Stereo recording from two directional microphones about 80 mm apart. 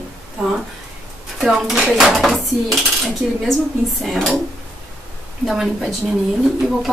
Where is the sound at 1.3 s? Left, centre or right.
Centre.